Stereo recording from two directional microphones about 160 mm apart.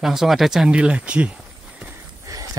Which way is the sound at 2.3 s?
20° right (ahead or behind).